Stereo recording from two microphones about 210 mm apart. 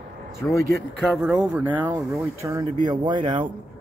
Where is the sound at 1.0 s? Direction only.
5° right (ahead or behind); by 3.4 s 20° right (ahead or behind).